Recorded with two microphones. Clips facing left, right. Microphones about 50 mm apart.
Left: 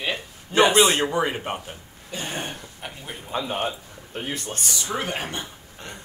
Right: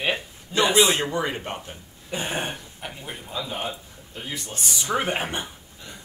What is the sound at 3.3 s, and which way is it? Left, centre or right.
A man's voice, left.